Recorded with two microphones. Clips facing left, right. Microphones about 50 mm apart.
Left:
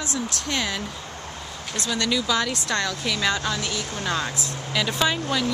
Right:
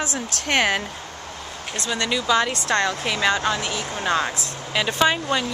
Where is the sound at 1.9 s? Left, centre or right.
Right.